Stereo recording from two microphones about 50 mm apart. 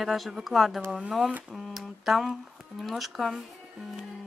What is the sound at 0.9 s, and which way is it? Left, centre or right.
Speech, centre.